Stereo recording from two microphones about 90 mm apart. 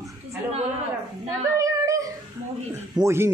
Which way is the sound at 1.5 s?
40° right (ahead or behind).